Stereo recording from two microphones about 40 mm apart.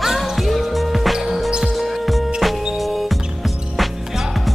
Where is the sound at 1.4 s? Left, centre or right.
Centre.